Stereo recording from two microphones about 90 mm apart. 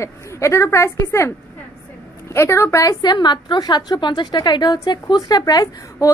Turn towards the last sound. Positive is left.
turn(degrees=45)  # may be behind; listen again after turning